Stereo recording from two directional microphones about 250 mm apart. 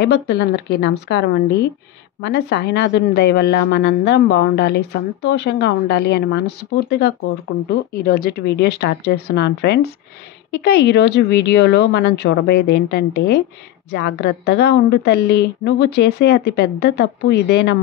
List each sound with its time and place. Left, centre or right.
0.0 s a woman's voice: left
2.2 s a woman's voice: left